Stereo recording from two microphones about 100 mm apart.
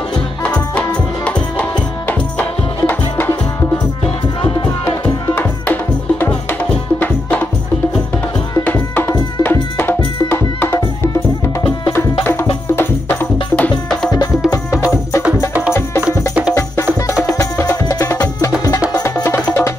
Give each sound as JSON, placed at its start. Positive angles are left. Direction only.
{"t": 0.4, "sound": "music", "side_deg": 10}
{"t": 4.4, "sound": "music", "side_deg": 50}
{"t": 5.3, "sound": "music", "side_deg": 20}
{"t": 8.6, "sound": "music", "side_deg": 20}
{"t": 11.9, "sound": "music", "side_deg": 25}
{"t": 16.0, "sound": "music", "side_deg": -15}
{"t": 17.6, "sound": "music", "side_deg": 35}